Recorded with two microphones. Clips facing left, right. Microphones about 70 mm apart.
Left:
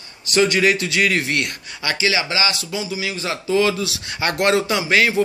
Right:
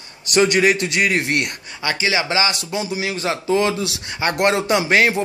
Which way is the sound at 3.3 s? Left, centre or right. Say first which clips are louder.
Even; right.